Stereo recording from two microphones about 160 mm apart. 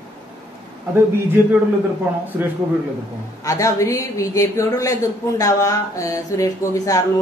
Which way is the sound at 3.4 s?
20° left (ahead or behind).